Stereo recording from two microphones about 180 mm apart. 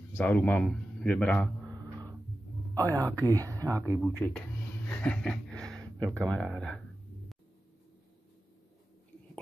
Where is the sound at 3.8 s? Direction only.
10° left (ahead or behind).